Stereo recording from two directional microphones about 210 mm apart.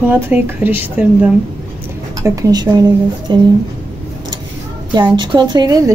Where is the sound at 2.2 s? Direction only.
15° right (ahead or behind).